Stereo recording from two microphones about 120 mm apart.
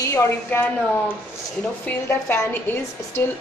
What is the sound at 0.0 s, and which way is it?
A woman's voice, 20° left (ahead or behind).